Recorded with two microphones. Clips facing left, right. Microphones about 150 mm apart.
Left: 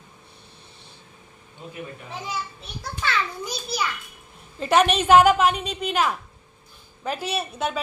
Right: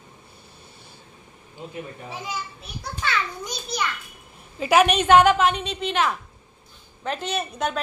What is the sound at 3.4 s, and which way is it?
A woman's voice, 5° left (ahead or behind).